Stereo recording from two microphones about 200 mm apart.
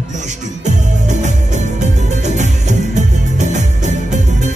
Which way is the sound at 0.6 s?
35° right (ahead or behind).